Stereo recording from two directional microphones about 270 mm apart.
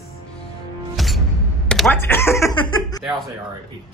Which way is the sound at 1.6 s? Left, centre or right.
Centre.